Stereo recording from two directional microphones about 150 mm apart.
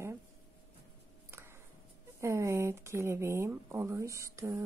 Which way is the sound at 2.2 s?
20° right (ahead or behind).